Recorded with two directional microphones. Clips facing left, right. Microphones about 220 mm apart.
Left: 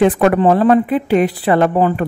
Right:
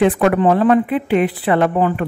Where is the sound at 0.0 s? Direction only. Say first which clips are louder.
Left 2 dB; 40° left (ahead or behind).